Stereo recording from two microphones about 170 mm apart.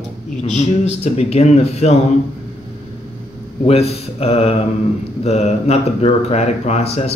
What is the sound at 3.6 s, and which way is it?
Speech, 35° left (ahead or behind).